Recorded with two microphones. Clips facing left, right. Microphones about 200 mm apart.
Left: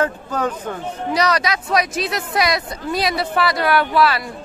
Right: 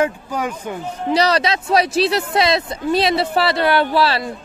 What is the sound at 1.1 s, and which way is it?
A woman's voice, 30° right (ahead or behind).